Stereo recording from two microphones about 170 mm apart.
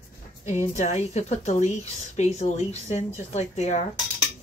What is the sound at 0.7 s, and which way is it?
A woman's voice, 40° left (ahead or behind).